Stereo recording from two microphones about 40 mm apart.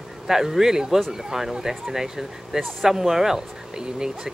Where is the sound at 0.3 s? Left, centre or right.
Centre.